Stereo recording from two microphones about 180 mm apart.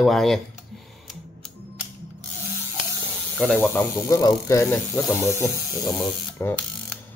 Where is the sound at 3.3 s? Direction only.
Centre (ahead or behind).